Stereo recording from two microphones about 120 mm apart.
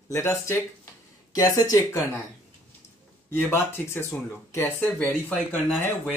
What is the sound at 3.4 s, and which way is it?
Speech, 20° left (ahead or behind).